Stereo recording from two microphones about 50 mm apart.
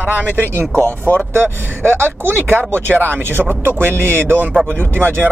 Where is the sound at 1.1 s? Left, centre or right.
Right.